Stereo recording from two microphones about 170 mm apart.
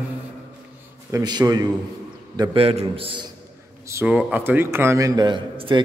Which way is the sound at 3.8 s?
10° right (ahead or behind).